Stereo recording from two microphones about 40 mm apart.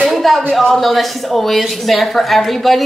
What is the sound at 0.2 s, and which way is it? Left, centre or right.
A woman's voice, centre.